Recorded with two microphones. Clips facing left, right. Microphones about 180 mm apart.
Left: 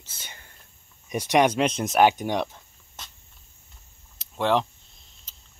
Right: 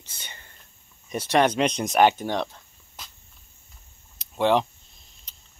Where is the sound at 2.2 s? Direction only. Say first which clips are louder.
Left 1 dB; 15° left (ahead or behind).